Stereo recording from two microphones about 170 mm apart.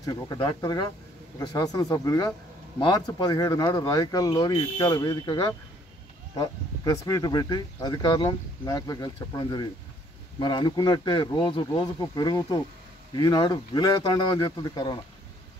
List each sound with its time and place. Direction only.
0.0 s speech: 25° left (ahead or behind)